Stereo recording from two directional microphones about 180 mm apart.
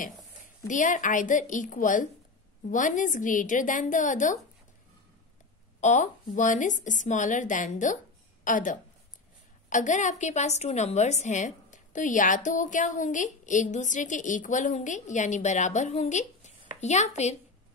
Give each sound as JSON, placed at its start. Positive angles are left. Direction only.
{"t": 0.7, "sound": "a woman's voice", "side_deg": 45}
{"t": 5.8, "sound": "a woman's voice", "side_deg": 45}